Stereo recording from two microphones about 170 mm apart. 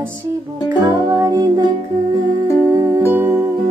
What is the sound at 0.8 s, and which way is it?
Music, 20° right (ahead or behind).